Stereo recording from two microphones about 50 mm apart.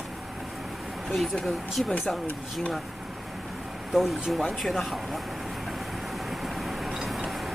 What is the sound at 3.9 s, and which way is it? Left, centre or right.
Speech, centre.